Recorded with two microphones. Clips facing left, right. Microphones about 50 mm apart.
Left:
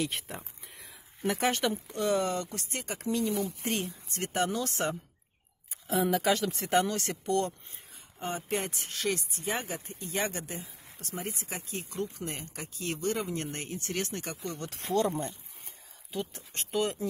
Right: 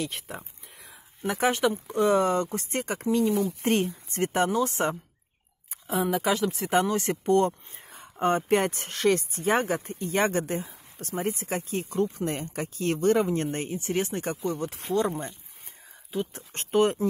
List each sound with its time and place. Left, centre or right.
0.0 s speech: centre
0.4 s whispering: centre
1.2 s speech: centre
1.9 s speech: right
4.5 s speech: centre
5.9 s speech: centre
6.8 s speech: centre
13.7 s speech: centre
16.3 s speech: right